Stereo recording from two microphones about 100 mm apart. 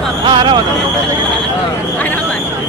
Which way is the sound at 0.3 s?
50° right (ahead or behind).